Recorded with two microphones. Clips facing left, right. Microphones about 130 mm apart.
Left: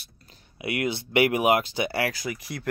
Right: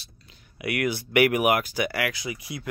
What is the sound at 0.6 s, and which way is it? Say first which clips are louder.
Speech: right 1 dB; 25° left (ahead or behind).